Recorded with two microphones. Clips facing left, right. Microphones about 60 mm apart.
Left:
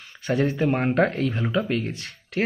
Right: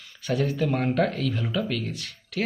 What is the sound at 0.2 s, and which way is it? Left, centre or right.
Speech, left.